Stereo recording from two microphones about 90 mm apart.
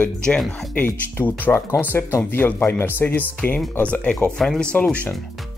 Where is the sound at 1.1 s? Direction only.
25° left (ahead or behind).